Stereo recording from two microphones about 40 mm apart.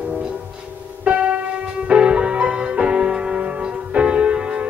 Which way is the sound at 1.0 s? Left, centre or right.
Right.